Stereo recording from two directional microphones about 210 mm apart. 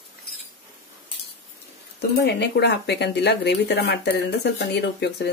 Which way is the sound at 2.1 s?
55° left (ahead or behind).